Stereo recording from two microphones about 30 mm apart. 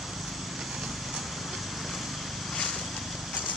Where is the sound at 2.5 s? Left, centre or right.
Centre.